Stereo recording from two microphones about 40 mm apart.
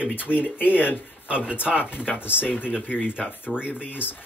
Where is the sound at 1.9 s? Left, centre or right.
Left.